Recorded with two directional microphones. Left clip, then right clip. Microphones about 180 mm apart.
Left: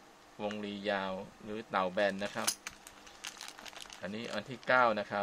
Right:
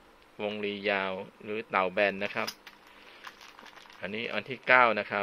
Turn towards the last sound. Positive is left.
turn(degrees=-10)  # may be behind; listen again after turning